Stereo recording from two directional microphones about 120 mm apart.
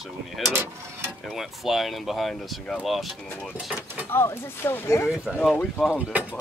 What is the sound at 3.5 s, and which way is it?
Speech, 10° right (ahead or behind).